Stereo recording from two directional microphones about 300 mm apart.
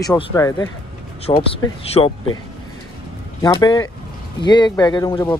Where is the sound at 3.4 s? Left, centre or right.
Centre.